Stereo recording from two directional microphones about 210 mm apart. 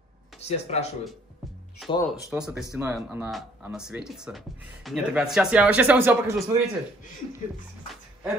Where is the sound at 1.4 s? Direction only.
Centre (ahead or behind).